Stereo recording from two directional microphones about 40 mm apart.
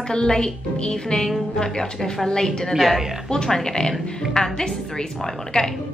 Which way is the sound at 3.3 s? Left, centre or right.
Centre.